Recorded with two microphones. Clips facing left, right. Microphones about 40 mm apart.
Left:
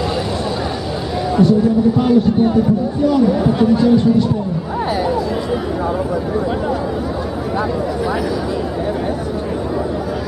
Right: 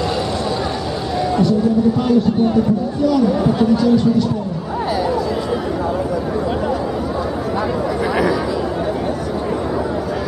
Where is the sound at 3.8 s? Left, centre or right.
Centre.